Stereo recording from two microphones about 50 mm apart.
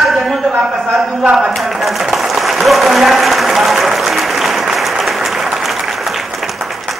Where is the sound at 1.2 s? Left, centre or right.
Centre.